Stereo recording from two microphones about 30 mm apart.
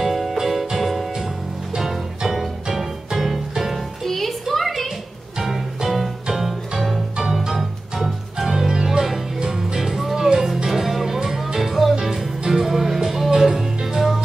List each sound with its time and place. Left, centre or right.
0.0 s music: centre
4.0 s a sound: centre
5.4 s music: centre
8.4 s music: centre